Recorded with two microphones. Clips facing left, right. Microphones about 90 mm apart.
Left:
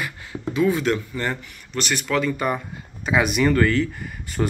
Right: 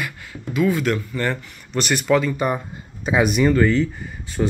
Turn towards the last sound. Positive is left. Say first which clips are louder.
# right 2 dB
turn(degrees=20)  # may be behind; listen again after turning